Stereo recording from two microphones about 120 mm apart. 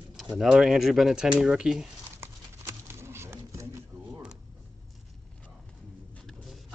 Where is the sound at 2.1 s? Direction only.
20° right (ahead or behind).